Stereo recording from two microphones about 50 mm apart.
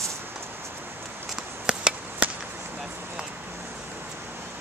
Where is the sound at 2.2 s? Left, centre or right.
Right.